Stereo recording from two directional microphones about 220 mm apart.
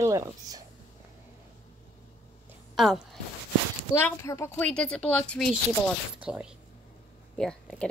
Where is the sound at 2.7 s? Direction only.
Centre (ahead or behind).